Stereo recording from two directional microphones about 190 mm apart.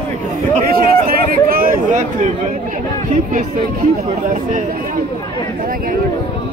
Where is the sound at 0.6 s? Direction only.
50° right (ahead or behind).